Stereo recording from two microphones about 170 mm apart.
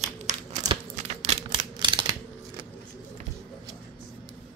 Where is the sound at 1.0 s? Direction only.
40° right (ahead or behind).